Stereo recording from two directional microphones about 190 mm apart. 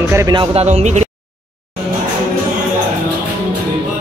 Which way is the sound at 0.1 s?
20° right (ahead or behind).